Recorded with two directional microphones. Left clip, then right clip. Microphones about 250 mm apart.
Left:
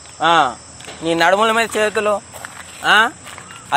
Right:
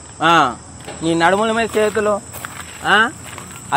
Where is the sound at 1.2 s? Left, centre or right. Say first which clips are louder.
Left 2 dB; left.